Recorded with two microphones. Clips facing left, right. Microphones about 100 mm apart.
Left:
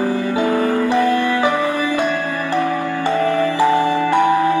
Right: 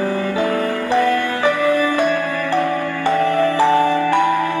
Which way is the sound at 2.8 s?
30° left (ahead or behind).